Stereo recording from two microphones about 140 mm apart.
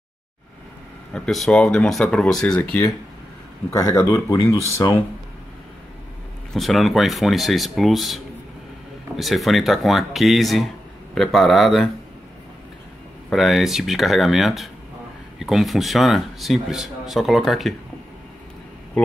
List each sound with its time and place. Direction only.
1.1 s a man's voice: 5° left (ahead or behind)
3.7 s speech: 20° left (ahead or behind)
6.5 s a man's voice: centre (ahead or behind)
13.3 s a man's voice: centre (ahead or behind)